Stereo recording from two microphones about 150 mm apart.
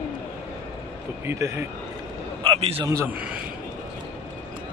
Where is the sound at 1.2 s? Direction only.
15° right (ahead or behind).